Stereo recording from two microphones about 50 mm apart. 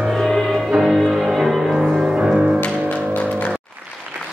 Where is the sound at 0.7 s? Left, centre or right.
Centre.